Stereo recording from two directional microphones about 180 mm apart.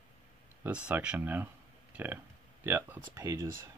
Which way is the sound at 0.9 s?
5° right (ahead or behind).